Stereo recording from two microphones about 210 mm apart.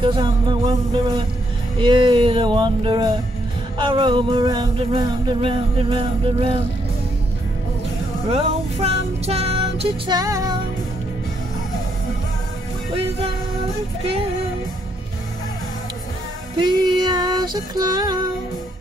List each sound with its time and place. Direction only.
0.0 s music: 25° right (ahead or behind)
8.3 s music: 30° right (ahead or behind)
12.9 s music: 30° right (ahead or behind)
16.5 s music: 20° right (ahead or behind)